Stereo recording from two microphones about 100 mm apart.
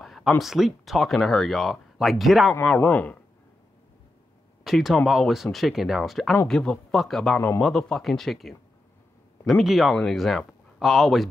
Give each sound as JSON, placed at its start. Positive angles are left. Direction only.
{"t": 0.0, "sound": "a sound", "side_deg": 0}
{"t": 0.4, "sound": "speech", "side_deg": 0}
{"t": 2.8, "sound": "speech", "side_deg": 20}
{"t": 4.6, "sound": "speech", "side_deg": 0}
{"t": 7.3, "sound": "speech", "side_deg": 25}
{"t": 7.6, "sound": "speech", "side_deg": 5}